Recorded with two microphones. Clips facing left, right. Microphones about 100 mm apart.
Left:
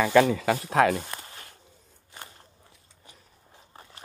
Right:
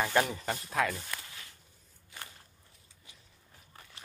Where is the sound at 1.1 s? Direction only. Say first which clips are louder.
Left 3 dB; 40° left (ahead or behind).